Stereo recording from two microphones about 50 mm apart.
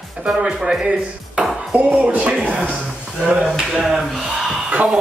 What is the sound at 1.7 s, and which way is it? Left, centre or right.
Speech, right.